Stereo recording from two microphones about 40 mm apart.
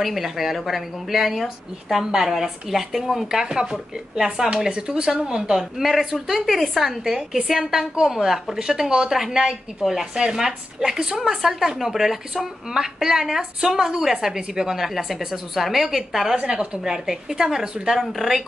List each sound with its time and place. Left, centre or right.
0.0 s a woman's voice: centre
3.3 s a woman's voice: centre
7.1 s a woman's voice: centre